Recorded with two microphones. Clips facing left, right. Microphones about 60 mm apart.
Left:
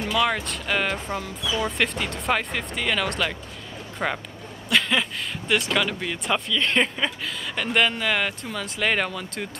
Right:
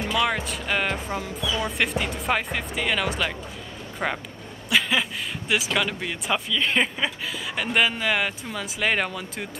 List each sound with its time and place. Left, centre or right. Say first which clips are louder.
0.0 s speech: left 1 dB; centre